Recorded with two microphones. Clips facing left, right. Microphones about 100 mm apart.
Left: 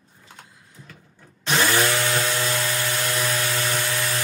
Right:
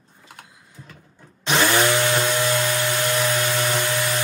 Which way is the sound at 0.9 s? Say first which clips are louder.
Right 1 dB; 25° right (ahead or behind).